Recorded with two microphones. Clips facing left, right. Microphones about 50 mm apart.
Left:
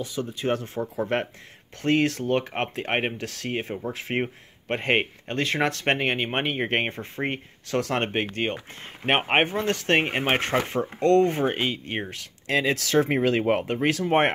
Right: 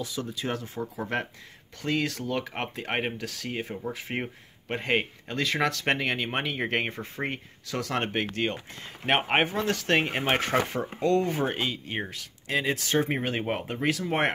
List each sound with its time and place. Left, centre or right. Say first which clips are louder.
0.0 s speech: left 4 dB; left
0.7 s speech: left 5 dB; centre
1.8 s speech: left 6 dB; left
3.4 s speech: left 4 dB; left
7.6 s speech: left 4 dB; left
8.1 s speech: left 2 dB; left
11.0 s speech: left 6 dB; left
11.4 s speech: left 4 dB; left
12.1 s speech: left 4 dB; left